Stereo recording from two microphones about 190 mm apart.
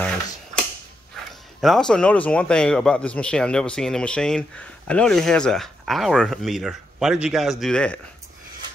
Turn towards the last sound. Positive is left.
turn(degrees=5)  # may be behind; listen again after turning